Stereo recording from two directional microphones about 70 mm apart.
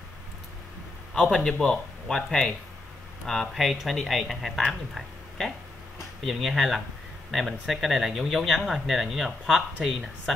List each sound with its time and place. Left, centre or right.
1.1 s speech: centre